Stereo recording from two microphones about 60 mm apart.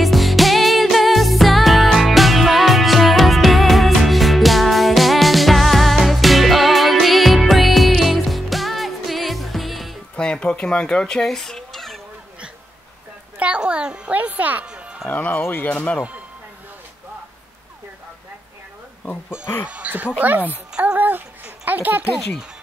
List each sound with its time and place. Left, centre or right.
0.0 s music: centre
10.1 s a sound: centre
13.6 s a child's voice: centre
14.1 s speech: right
14.7 s music: centre
15.0 s speech: left
19.6 s speech: right